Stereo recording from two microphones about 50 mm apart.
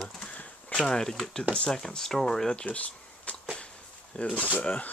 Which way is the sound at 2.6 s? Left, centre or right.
Left.